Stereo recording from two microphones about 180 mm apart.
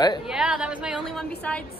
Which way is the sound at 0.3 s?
5° right (ahead or behind).